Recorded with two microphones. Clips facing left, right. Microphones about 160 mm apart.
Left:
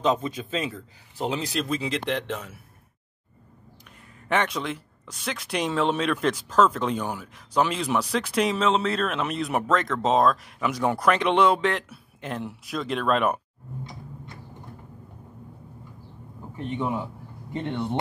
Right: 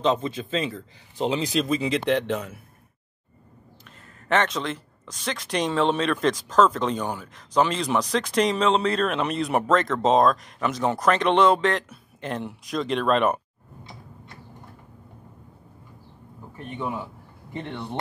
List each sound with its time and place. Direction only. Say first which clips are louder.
0.0 s speech: right 1 dB; 10° left (ahead or behind)
4.3 s speech: right 2 dB; 10° left (ahead or behind)
16.5 s speech: left 3 dB; 20° left (ahead or behind)